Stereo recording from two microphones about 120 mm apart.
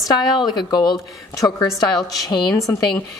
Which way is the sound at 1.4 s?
25° left (ahead or behind).